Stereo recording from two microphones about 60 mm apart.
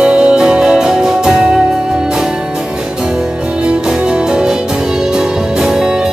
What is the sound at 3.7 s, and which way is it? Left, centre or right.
Music, centre.